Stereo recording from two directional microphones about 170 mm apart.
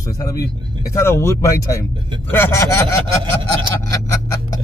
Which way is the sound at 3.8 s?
20° left (ahead or behind).